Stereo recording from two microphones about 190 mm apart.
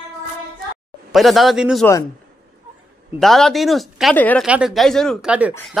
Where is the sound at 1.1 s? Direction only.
Centre (ahead or behind).